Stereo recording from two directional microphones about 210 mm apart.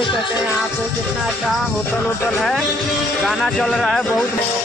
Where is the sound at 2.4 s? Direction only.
Centre (ahead or behind).